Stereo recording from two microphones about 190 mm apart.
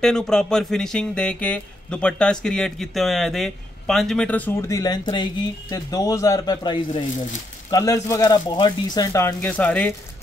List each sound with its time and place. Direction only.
0.0 s speech: 5° left (ahead or behind)